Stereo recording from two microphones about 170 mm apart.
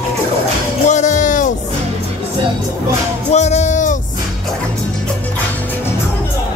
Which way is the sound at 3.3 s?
40° left (ahead or behind).